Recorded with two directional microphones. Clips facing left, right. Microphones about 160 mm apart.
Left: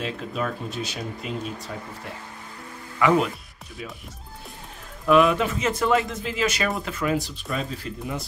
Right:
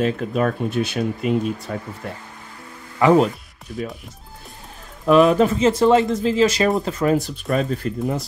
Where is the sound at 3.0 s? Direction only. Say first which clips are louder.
Right 6 dB; 35° right (ahead or behind).